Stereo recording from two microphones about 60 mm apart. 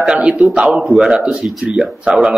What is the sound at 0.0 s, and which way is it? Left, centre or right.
A man's voice, centre.